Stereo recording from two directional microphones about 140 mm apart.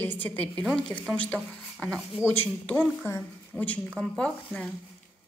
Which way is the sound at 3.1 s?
15° left (ahead or behind).